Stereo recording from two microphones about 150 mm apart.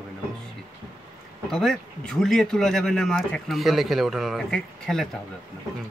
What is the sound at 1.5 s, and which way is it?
Speech, 5° left (ahead or behind).